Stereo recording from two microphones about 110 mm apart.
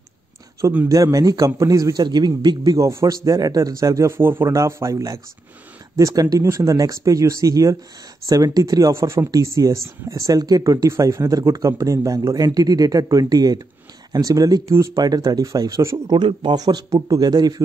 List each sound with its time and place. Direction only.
0.8 s speech: 30° right (ahead or behind)
16.1 s speech: 45° right (ahead or behind)